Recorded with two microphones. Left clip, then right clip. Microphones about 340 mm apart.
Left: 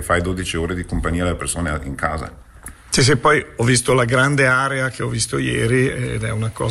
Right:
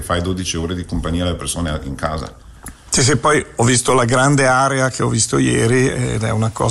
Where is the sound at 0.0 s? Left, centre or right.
Centre.